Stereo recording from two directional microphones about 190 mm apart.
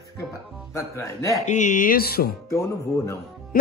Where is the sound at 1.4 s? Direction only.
40° left (ahead or behind).